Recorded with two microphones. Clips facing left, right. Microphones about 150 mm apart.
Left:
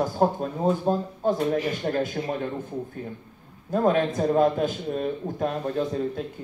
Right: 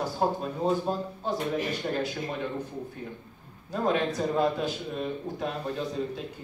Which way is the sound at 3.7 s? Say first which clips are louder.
Left 5 dB; 50° left (ahead or behind).